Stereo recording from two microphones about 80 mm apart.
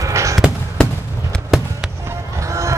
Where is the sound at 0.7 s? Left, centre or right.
Centre.